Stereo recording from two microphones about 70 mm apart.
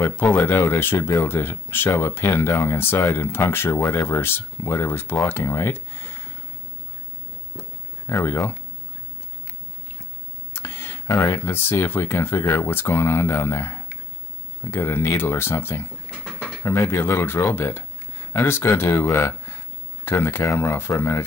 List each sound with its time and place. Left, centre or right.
0.0 s speech: left
8.1 s speech: left
10.5 s speech: left